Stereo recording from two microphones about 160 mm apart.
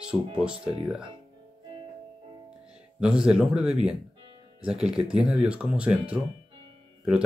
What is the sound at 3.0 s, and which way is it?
Speech, 5° right (ahead or behind).